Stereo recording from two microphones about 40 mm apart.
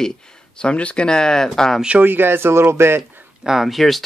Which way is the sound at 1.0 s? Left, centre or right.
Centre.